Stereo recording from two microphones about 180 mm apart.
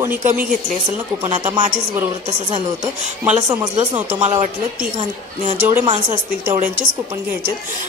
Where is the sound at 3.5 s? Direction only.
30° right (ahead or behind).